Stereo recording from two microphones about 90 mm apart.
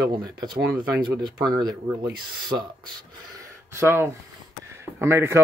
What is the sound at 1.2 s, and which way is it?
Speech, 50° right (ahead or behind).